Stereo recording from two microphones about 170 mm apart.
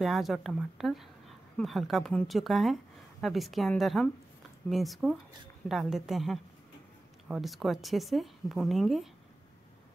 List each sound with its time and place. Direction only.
0.0 s a woman's voice: centre (ahead or behind)